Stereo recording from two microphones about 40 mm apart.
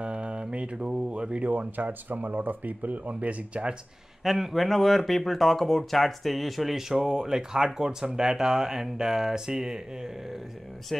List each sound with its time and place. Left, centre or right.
0.0 s mantra: right
1.5 s speech: right
4.2 s speech: centre
10.9 s speech: centre